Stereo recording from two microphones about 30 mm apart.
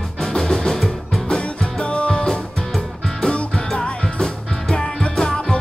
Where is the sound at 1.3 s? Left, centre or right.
Left.